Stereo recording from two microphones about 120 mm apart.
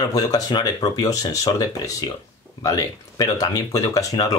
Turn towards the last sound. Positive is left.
turn(degrees=30)  # may be behind; listen again after turning